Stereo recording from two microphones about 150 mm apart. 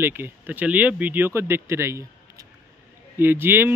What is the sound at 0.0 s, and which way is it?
Speech, 15° right (ahead or behind).